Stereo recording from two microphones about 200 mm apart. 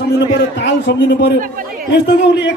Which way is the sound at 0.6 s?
60° left (ahead or behind).